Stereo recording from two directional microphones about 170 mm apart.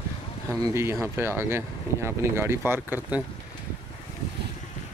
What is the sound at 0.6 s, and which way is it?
Speech, 15° right (ahead or behind).